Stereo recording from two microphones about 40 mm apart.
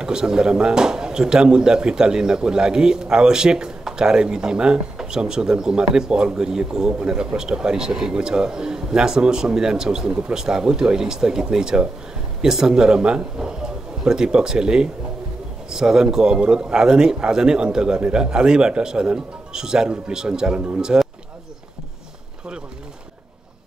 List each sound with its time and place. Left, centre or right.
0.0 s a man's voice: centre